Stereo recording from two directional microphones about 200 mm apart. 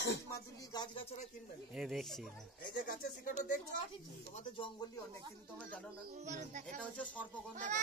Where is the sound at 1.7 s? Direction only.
Centre (ahead or behind).